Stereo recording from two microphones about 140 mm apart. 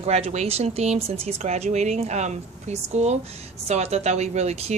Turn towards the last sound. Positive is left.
turn(degrees=-50)  # may be behind; listen again after turning